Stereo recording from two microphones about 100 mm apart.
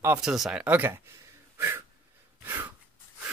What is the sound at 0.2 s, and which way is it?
Speech, 5° right (ahead or behind).